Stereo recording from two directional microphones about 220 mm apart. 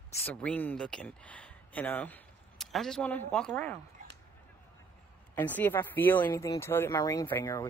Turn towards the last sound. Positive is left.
turn(degrees=10)  # may be behind; listen again after turning